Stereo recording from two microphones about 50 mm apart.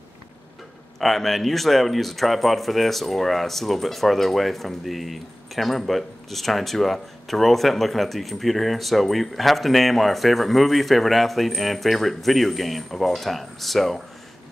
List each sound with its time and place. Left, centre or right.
0.9 s speech: centre